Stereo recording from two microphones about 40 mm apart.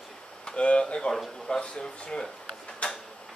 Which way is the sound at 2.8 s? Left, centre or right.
Left.